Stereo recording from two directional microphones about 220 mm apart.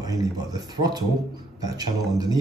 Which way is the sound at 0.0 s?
15° right (ahead or behind).